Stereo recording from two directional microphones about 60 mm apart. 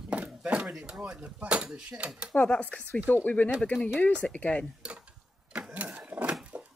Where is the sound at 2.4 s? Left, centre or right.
Left.